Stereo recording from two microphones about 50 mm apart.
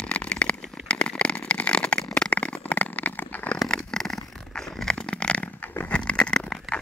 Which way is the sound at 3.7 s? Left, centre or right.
Centre.